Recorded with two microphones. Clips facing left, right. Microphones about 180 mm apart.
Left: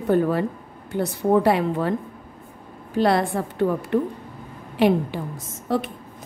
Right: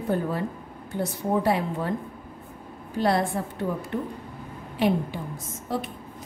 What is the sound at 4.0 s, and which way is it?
Speech, 90° left.